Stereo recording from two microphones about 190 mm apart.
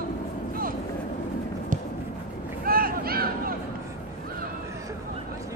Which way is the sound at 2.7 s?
50° right (ahead or behind).